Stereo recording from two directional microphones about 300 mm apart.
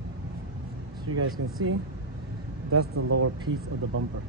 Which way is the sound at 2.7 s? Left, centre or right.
Right.